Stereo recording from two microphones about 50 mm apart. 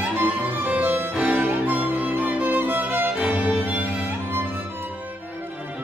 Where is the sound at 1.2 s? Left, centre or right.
Right.